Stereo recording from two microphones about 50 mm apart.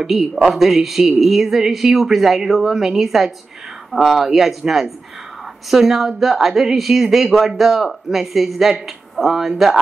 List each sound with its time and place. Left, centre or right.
0.0 s speech: centre